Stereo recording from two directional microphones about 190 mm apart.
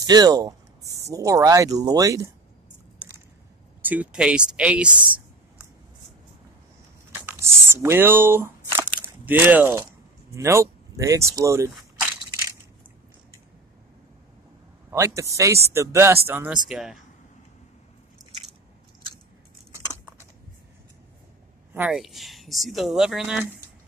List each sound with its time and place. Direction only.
0.0 s speech: 20° right (ahead or behind)
3.8 s speech: 10° right (ahead or behind)
7.2 s a sound: 10° right (ahead or behind)
10.3 s speech: 15° right (ahead or behind)
14.9 s a man's voice: 15° right (ahead or behind)
21.7 s speech: 5° right (ahead or behind)